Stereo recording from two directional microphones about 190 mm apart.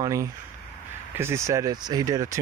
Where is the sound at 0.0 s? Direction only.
15° right (ahead or behind).